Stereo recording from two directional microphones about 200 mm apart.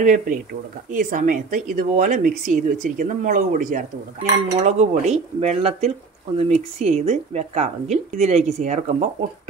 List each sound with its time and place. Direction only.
0.0 s speech: 40° right (ahead or behind)